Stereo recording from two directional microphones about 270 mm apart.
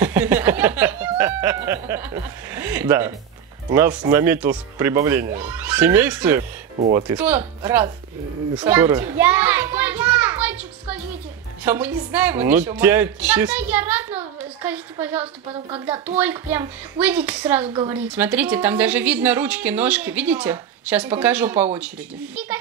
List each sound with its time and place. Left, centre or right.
0.0 s speech: centre
6.8 s speech: centre
7.2 s a child's voice: centre
17.6 s speech: centre
17.9 s a woman's voice: centre